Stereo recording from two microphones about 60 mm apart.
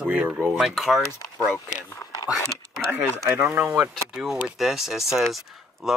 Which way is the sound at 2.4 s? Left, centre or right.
Centre.